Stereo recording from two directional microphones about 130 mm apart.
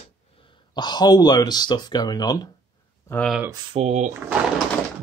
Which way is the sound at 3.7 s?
55° right (ahead or behind).